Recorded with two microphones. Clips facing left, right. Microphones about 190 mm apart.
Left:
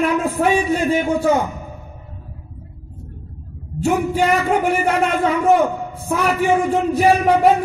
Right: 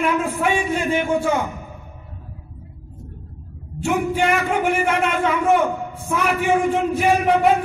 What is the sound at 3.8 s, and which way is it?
A man's voice, 40° left (ahead or behind).